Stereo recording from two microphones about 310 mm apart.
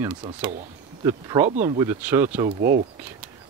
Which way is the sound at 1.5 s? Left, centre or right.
Right.